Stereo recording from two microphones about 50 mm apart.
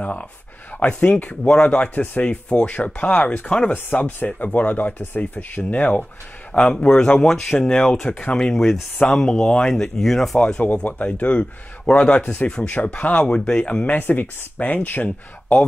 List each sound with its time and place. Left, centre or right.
0.7 s a man's voice: left
3.4 s a man's voice: centre
3.7 s speech: left
6.7 s a man's voice: centre
9.0 s speech: centre
10.6 s a man's voice: left
13.9 s speech: left
15.0 s speech: left